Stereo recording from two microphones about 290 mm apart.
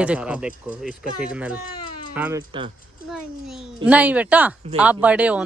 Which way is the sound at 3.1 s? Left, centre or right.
Centre.